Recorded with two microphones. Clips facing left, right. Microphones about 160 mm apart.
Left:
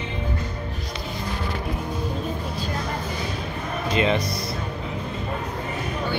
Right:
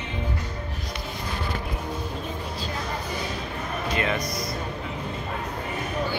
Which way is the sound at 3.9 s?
25° left (ahead or behind).